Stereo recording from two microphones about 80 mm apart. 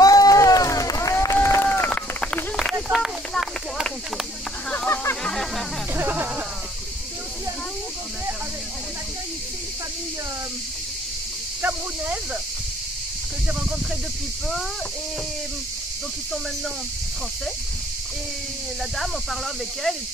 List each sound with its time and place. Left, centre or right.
0.0 s run: left
1.9 s run: centre
3.0 s a sound: centre
4.8 s a sound: left
5.2 s music: centre
5.9 s music: right